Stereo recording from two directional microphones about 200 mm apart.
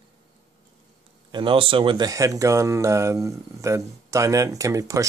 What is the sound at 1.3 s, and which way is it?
Speech, 25° right (ahead or behind).